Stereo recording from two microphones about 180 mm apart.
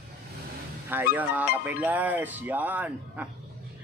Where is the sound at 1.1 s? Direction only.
10° right (ahead or behind).